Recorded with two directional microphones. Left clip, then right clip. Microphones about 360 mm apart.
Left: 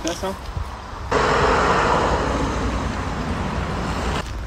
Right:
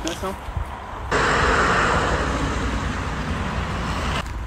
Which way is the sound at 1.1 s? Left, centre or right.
Left.